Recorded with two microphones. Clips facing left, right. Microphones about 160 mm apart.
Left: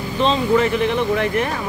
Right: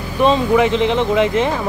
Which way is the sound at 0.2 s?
20° right (ahead or behind).